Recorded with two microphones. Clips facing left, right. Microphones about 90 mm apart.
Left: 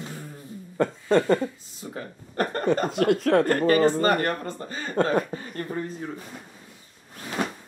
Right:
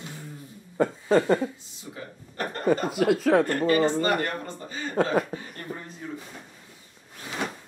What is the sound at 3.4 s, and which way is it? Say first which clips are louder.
Speech: left 3 dB; 45° left (ahead or behind).